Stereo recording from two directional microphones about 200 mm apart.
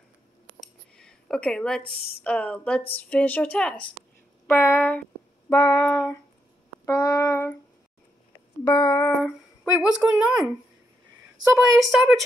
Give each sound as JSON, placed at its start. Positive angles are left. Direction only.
{"t": 0.6, "sound": "a sound", "side_deg": 5}
{"t": 1.9, "sound": "speech", "side_deg": 50}
{"t": 2.2, "sound": "a woman's voice", "side_deg": 5}
{"t": 8.6, "sound": "a woman's voice", "side_deg": 15}
{"t": 9.2, "sound": "speech", "side_deg": -5}
{"t": 11.5, "sound": "a woman's voice", "side_deg": 0}